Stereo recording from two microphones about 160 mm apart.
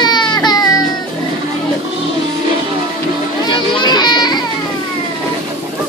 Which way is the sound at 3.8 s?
25° left (ahead or behind).